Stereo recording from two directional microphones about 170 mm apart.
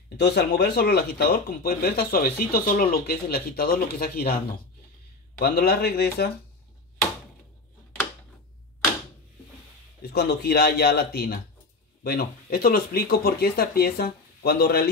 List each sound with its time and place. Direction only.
0.2 s speech: 75° left (ahead or behind)
5.4 s a man's voice: 70° left (ahead or behind)
10.0 s a man's voice: 70° left (ahead or behind)